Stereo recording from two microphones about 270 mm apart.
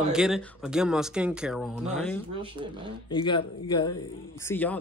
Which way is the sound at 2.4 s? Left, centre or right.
Centre.